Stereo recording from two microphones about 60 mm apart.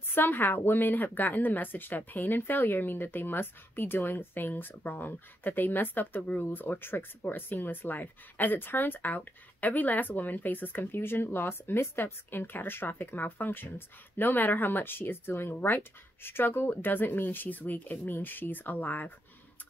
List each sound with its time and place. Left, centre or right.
0.1 s speech: left